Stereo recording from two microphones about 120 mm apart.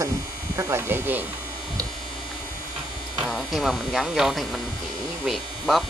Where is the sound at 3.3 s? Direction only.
Centre (ahead or behind).